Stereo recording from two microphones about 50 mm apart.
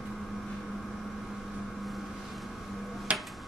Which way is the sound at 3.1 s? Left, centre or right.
Right.